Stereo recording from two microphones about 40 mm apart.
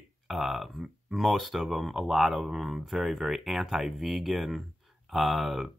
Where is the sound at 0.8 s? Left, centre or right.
Centre.